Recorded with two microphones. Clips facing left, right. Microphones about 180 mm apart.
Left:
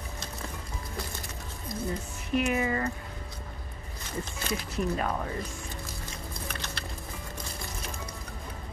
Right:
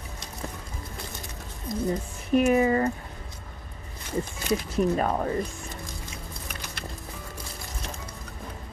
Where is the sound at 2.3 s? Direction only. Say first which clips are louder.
Right 7 dB; 40° right (ahead or behind).